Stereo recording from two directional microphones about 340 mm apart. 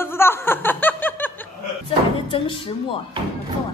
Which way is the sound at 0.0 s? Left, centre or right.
Centre.